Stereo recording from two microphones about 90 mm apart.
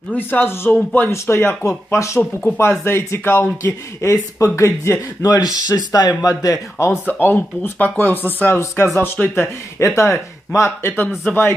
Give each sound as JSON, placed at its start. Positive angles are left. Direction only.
{"t": 0.1, "sound": "speech", "side_deg": 20}
{"t": 5.4, "sound": "speech", "side_deg": 45}
{"t": 6.9, "sound": "speech", "side_deg": 20}